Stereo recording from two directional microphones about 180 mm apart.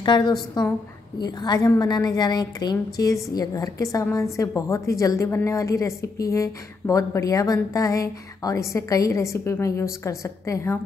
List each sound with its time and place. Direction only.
0.0 s a woman's voice: 25° left (ahead or behind)